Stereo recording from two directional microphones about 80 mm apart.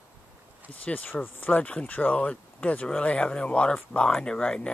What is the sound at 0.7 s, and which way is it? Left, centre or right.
Speech, centre.